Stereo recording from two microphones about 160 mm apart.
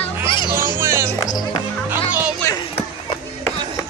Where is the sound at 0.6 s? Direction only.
15° right (ahead or behind).